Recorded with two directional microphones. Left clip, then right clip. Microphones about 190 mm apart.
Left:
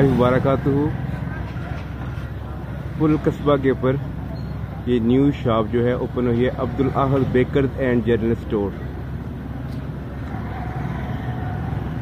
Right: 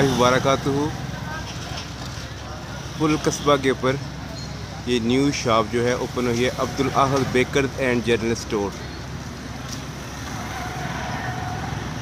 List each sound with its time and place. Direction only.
0.0 s speech: 10° right (ahead or behind)
3.0 s speech: 10° right (ahead or behind)